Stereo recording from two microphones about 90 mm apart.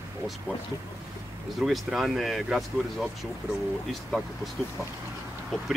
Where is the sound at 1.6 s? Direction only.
Centre (ahead or behind).